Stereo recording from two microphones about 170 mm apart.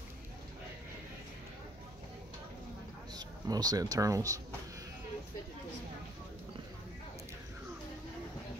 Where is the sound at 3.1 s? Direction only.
20° right (ahead or behind).